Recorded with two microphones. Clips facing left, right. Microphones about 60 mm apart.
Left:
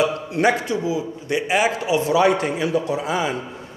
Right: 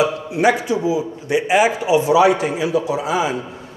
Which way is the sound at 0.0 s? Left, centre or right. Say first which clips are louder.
Right 2 dB; centre.